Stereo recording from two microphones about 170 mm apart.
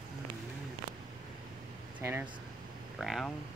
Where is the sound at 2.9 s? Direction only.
Centre (ahead or behind).